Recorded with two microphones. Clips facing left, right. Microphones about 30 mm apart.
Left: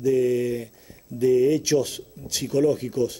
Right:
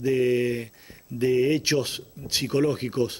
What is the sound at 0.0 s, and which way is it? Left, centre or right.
Speech, right.